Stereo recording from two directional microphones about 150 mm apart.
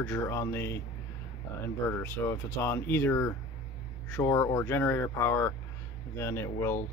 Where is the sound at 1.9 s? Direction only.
15° left (ahead or behind).